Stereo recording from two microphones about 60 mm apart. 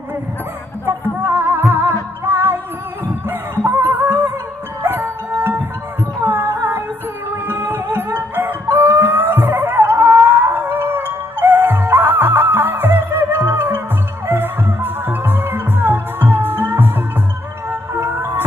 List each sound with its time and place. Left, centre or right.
1.2 s music: right